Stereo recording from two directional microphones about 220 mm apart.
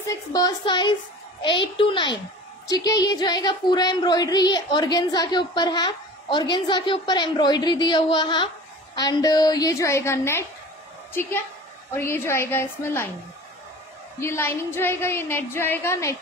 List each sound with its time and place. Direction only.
0.0 s a woman's voice: 15° left (ahead or behind)
11.9 s a woman's voice: 10° left (ahead or behind)
14.2 s a woman's voice: 10° left (ahead or behind)